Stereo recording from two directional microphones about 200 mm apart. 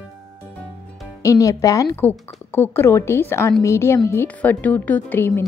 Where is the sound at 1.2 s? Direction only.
15° left (ahead or behind).